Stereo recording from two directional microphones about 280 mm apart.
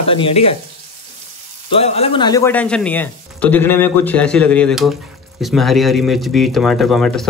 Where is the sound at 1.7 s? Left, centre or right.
Left.